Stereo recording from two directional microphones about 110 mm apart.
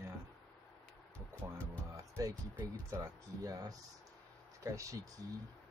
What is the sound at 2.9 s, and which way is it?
Speech, 30° right (ahead or behind).